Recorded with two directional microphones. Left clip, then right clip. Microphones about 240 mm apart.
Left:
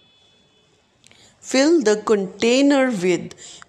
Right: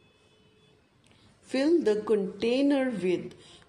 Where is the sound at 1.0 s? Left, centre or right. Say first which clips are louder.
Left 11 dB; centre.